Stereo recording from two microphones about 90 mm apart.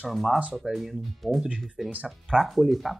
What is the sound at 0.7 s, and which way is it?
Speech, centre (ahead or behind).